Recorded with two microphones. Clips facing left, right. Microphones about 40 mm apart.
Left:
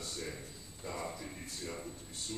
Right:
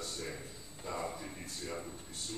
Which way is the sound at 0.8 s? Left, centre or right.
Centre.